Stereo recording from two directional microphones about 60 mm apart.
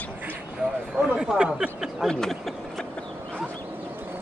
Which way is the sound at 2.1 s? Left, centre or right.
Centre.